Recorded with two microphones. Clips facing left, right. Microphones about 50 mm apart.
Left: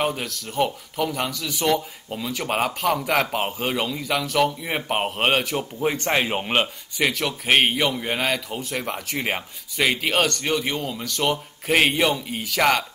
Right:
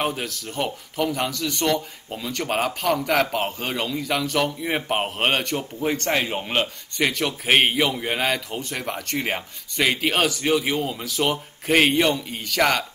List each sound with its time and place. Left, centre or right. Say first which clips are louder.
0.0 s a man's voice: left 1 dB; centre
7.0 s a man's voice: even; centre